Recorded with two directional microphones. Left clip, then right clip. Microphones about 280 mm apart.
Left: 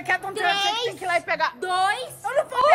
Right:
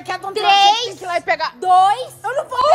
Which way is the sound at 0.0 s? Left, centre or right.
Centre.